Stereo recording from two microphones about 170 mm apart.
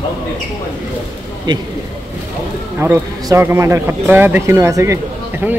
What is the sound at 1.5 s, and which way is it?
Speech, 25° right (ahead or behind).